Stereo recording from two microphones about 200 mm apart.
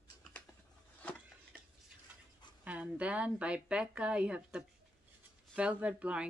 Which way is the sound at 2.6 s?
5° right (ahead or behind).